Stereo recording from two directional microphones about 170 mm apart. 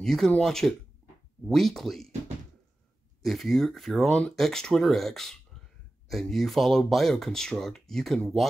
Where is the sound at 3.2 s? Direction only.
Centre (ahead or behind).